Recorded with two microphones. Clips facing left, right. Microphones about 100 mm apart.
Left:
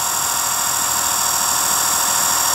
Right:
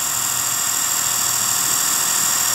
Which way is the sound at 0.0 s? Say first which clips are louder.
Left 6 dB; 20° left (ahead or behind).